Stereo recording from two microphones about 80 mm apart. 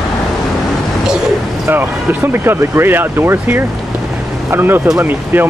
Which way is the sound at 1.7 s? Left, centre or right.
Right.